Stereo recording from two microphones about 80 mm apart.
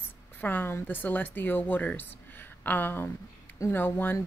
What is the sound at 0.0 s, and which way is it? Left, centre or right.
Speech, left.